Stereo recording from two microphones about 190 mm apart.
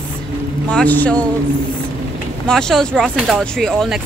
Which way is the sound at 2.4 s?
5° left (ahead or behind).